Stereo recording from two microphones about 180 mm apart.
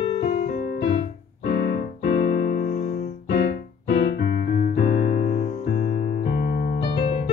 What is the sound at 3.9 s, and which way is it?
Keyboard, 60° left (ahead or behind).